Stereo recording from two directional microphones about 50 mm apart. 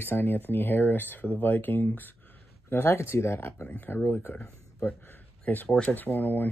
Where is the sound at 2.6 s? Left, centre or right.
Left.